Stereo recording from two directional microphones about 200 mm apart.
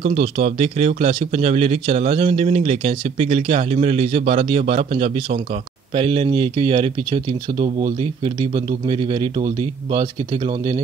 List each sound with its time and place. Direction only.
0.0 s speech: 30° right (ahead or behind)